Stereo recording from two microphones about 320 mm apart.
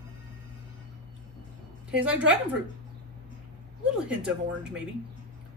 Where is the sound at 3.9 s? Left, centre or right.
Centre.